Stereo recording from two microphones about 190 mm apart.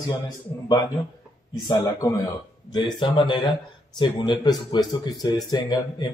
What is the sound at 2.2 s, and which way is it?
A man's voice, 25° left (ahead or behind).